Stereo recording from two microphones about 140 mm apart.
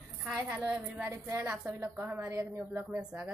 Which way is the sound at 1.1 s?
20° right (ahead or behind).